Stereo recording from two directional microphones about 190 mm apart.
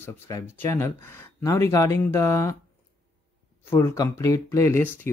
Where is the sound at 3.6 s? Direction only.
15° left (ahead or behind).